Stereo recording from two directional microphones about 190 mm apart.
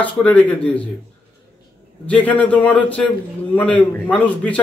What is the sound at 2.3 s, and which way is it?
A man's voice, 5° left (ahead or behind).